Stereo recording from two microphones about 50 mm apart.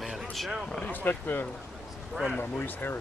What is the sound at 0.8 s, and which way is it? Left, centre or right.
Speech, left.